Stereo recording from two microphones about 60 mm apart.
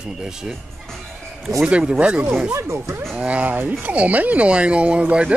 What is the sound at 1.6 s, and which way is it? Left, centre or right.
Speech, centre.